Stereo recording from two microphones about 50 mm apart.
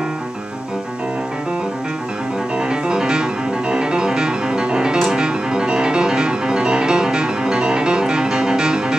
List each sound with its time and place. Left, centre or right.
2.7 s music: centre